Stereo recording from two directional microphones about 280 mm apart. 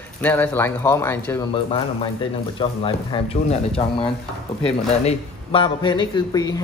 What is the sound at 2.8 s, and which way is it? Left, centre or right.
Speech, left.